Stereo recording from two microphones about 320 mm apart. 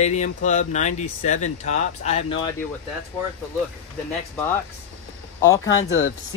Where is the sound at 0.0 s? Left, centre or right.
Left.